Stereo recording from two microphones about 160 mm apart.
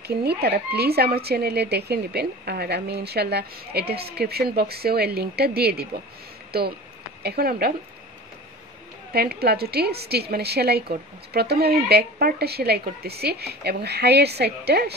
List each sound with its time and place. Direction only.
0.0 s a woman's voice: 90° right; by 7.7 s 70° right (ahead or behind)
9.1 s a woman's voice: 75° right (ahead or behind)